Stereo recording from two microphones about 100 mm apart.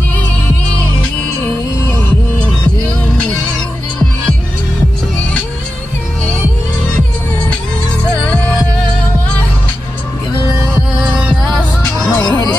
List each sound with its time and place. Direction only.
1.4 s music: 20° left (ahead or behind)
11.1 s music: 5° right (ahead or behind)